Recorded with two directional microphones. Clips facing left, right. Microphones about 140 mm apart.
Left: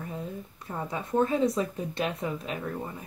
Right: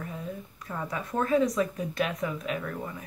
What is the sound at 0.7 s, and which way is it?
Speech, 25° left (ahead or behind).